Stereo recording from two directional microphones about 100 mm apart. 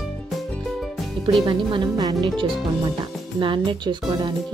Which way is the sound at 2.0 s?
40° right (ahead or behind).